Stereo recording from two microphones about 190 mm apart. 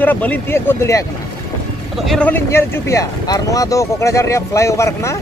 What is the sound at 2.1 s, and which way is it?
Speech, 5° left (ahead or behind).